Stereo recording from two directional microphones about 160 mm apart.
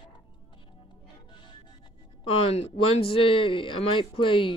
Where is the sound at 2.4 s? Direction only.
40° left (ahead or behind).